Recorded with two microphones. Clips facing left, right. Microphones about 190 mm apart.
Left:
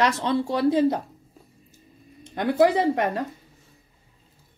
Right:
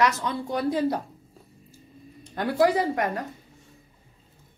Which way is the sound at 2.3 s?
20° left (ahead or behind).